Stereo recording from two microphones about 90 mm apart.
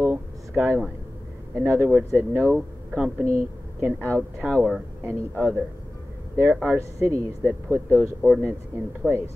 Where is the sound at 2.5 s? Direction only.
15° right (ahead or behind).